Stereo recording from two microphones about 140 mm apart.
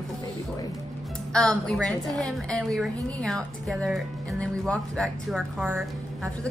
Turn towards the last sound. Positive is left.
turn(degrees=0)  # may be behind; listen again after turning